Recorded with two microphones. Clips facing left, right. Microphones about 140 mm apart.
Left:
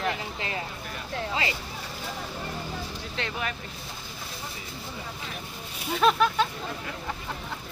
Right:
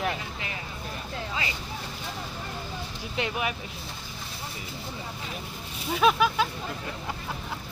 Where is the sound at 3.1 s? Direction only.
15° right (ahead or behind).